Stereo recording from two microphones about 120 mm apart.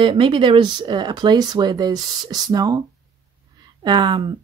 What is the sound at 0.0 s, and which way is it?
Speech, 45° right (ahead or behind).